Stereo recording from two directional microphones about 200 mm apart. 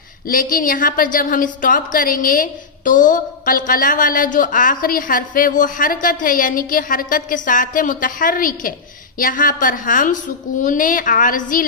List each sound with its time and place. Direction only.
0.3 s a woman's voice: 45° left (ahead or behind)